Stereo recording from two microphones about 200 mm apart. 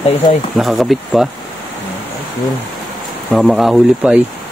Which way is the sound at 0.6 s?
Centre (ahead or behind).